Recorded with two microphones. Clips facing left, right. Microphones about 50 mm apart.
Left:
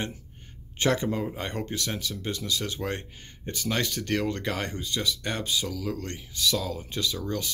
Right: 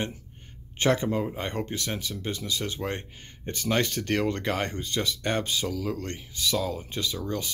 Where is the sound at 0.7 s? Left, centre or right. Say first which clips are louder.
Right 1 dB; right.